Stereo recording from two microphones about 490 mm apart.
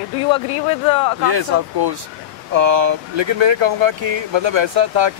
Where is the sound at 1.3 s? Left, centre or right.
Right.